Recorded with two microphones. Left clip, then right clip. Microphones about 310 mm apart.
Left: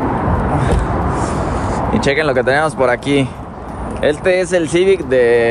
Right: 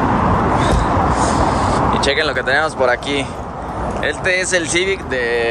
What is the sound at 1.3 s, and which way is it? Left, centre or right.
Speech, left.